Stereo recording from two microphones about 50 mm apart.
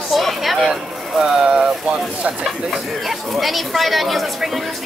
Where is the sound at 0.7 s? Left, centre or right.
Centre.